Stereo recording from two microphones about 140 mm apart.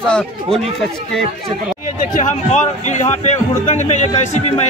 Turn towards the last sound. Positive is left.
turn(degrees=55)  # may be behind; listen again after turning